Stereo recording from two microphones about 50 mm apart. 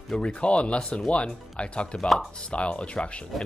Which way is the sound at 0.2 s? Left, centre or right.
Left.